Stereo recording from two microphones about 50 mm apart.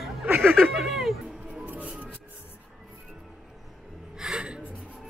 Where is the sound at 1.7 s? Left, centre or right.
Right.